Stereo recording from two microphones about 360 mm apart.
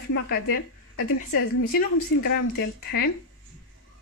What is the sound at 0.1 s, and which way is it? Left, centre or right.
Speech, left.